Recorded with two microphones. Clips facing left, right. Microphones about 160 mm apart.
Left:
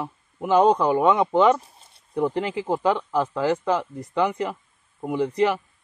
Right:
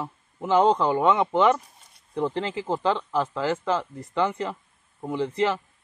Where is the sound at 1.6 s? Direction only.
30° left (ahead or behind).